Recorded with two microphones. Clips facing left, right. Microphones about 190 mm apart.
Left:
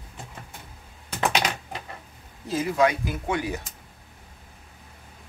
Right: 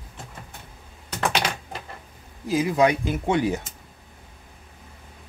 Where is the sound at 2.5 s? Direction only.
15° right (ahead or behind).